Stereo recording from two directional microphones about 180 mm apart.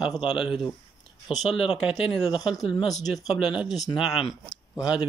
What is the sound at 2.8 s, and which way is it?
Speech, centre (ahead or behind).